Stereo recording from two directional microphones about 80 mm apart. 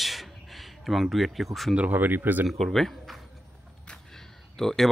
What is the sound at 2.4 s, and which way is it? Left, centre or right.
Speech, centre.